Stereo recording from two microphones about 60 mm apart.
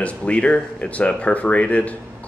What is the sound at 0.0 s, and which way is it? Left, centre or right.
Speech, centre.